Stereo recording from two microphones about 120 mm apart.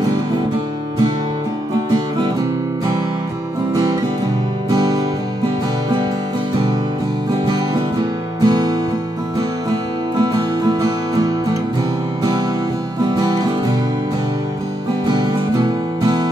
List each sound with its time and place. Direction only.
4.6 s music: 30° right (ahead or behind)
8.5 s music: 40° right (ahead or behind)